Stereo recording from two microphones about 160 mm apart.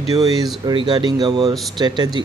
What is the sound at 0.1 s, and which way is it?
Speech, 25° right (ahead or behind).